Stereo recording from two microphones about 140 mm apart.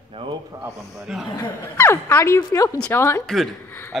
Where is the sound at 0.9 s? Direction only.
Centre (ahead or behind).